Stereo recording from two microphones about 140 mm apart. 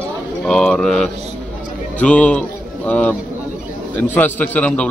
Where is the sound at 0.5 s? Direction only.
5° left (ahead or behind).